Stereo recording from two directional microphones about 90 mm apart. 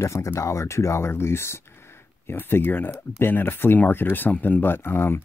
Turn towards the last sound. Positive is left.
turn(degrees=25)  # may be behind; listen again after turning